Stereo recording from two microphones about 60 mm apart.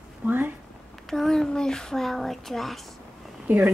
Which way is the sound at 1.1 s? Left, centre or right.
Centre.